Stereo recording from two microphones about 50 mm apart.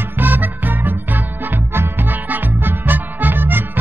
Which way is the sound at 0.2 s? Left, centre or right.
Right.